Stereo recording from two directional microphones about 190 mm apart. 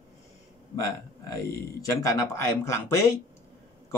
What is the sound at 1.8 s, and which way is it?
Speech, 15° left (ahead or behind).